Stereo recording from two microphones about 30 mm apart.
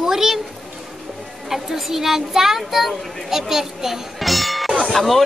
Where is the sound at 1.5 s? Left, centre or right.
Centre.